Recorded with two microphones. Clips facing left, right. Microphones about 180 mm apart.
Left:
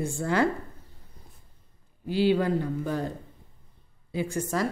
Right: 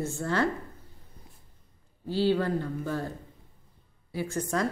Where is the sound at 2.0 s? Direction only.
15° left (ahead or behind).